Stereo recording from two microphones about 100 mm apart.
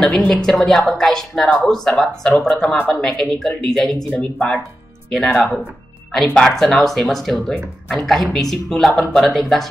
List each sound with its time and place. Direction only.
0.0 s speech: 10° left (ahead or behind)